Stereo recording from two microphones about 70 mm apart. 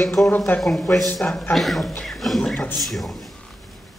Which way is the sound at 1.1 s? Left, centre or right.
Centre.